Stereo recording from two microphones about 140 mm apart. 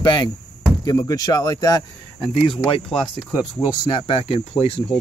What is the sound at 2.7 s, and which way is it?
Speech, 40° left (ahead or behind).